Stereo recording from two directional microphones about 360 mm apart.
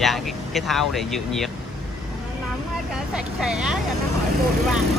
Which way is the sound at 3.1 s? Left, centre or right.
Centre.